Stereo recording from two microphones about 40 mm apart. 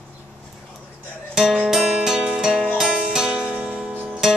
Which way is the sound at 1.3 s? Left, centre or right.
Centre.